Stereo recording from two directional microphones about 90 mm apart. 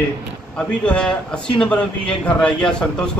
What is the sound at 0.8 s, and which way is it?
A man's voice, 10° left (ahead or behind).